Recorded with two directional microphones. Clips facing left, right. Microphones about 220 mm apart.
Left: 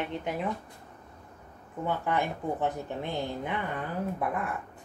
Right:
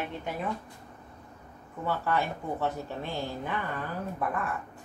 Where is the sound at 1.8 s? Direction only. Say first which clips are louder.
Even; 15° left (ahead or behind).